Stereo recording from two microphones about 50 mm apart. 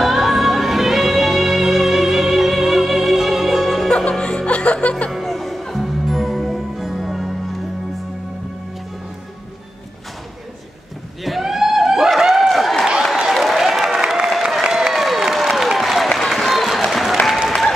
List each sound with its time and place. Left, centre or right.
0.0 s music: centre
4.2 s music: centre
5.1 s music: centre
11.2 s a sound: centre
13.3 s applause: centre